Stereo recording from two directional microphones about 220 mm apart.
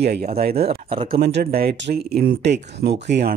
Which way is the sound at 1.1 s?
45° right (ahead or behind).